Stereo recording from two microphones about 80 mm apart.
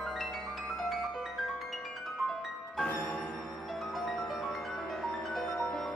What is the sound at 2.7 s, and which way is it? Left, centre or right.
Music, centre.